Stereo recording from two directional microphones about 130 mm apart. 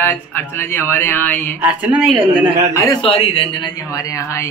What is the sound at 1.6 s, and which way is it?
Speech, 10° right (ahead or behind).